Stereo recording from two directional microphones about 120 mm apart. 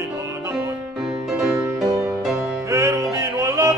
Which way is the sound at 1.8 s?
30° right (ahead or behind).